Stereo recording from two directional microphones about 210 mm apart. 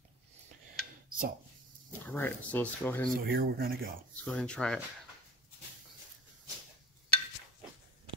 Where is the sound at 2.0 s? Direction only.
10° left (ahead or behind).